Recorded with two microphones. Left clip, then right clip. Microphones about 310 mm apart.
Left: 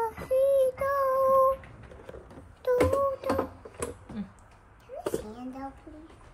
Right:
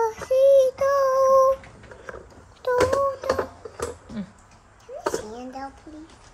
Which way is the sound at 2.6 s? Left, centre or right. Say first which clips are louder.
Right 3 dB; centre.